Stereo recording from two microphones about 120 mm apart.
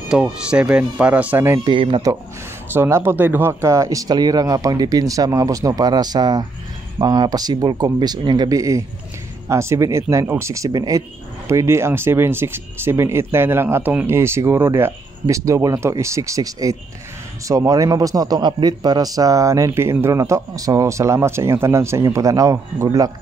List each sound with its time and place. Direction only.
0.1 s speech: 10° right (ahead or behind)
1.6 s speech: 45° right (ahead or behind)
2.7 s speech: 20° right (ahead or behind)